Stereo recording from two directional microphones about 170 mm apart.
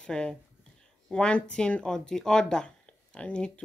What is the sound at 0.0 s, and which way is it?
Speech, 5° left (ahead or behind).